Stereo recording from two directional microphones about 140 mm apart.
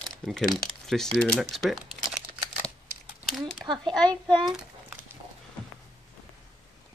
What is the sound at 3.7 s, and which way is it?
Speech, 35° right (ahead or behind).